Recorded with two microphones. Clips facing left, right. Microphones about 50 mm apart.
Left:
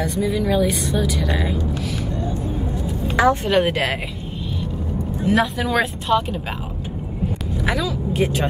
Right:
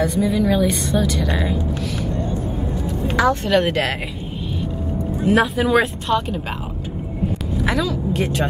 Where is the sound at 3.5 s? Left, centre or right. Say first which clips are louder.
Right 1 dB; centre.